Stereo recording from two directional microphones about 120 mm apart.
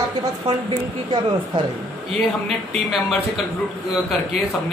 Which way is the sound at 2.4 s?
Centre (ahead or behind).